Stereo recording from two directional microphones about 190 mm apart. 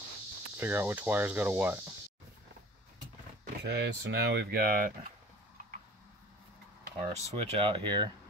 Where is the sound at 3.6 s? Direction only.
65° right (ahead or behind); by 5.1 s 50° right (ahead or behind).